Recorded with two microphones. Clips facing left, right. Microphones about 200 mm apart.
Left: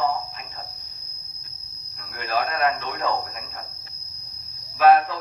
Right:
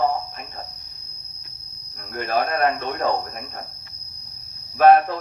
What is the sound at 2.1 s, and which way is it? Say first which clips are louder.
Speech: right 3 dB; 50° right (ahead or behind).